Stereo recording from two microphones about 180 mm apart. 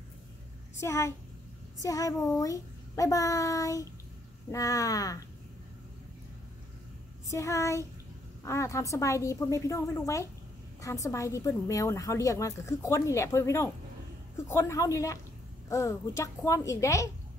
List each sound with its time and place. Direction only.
0.7 s a woman's voice: 15° left (ahead or behind)
7.2 s a woman's voice: 15° left (ahead or behind)